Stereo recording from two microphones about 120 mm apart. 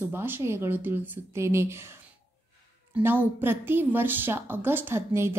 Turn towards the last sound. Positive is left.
turn(degrees=-20)  # may be behind; listen again after turning